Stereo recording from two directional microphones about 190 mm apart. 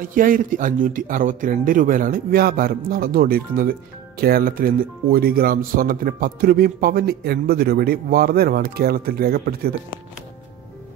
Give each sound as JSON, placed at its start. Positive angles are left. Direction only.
{"t": 0.1, "sound": "speech", "side_deg": -45}